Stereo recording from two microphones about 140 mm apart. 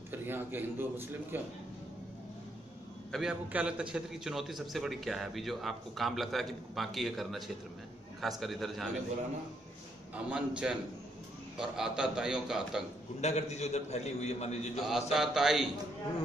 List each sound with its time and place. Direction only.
0.1 s a man's voice: 15° right (ahead or behind)
3.1 s a man's voice: 5° right (ahead or behind)
10.1 s a man's voice: 10° right (ahead or behind)
13.2 s a man's voice: 50° left (ahead or behind)
14.8 s a man's voice: 5° right (ahead or behind)